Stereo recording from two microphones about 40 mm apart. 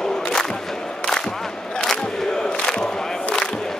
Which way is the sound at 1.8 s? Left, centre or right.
Centre.